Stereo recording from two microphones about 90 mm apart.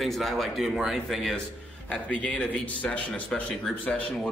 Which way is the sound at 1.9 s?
15° left (ahead or behind).